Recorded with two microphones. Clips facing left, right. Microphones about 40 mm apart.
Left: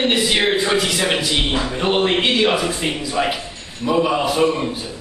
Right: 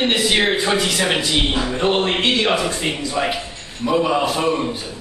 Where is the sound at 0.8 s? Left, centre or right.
Centre.